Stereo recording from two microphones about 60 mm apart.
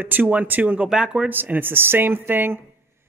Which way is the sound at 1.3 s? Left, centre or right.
Right.